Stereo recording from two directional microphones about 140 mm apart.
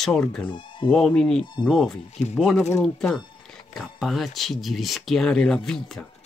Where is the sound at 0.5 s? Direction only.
35° left (ahead or behind).